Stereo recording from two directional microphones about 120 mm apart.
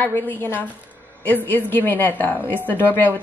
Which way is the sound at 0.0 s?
15° left (ahead or behind).